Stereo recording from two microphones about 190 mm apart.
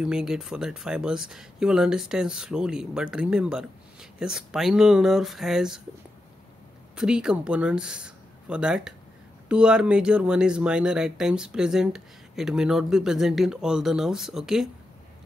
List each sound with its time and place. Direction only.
0.0 s speech: 5° right (ahead or behind)
7.0 s speech: 5° right (ahead or behind)